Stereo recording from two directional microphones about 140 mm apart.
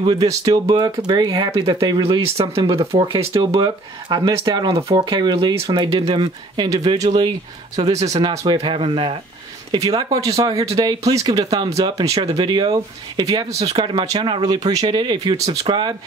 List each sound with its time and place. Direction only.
0.0 s speech: 30° right (ahead or behind)
2.2 s speech: 40° right (ahead or behind)
3.3 s speech: 25° right (ahead or behind)
7.7 s speech: 50° right (ahead or behind)
8.2 s speech: 30° right (ahead or behind)
9.7 s speech: 25° right (ahead or behind)